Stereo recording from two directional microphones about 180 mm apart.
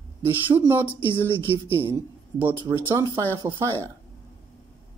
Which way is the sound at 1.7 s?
30° left (ahead or behind).